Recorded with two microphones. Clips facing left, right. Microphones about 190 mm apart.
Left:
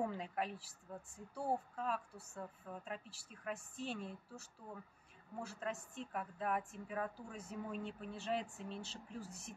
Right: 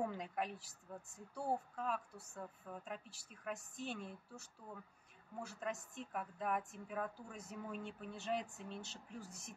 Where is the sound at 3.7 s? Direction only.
30° left (ahead or behind).